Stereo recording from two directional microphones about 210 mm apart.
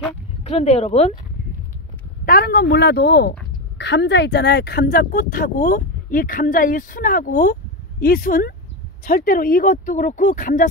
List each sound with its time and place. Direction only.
0.4 s speech: 30° left (ahead or behind)
2.2 s speech: 45° left (ahead or behind)